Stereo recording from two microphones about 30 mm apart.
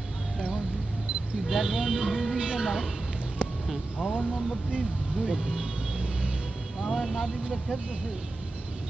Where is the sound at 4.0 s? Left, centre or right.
Centre.